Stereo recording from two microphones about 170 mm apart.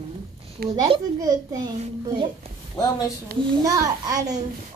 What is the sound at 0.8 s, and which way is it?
Speech, 25° right (ahead or behind).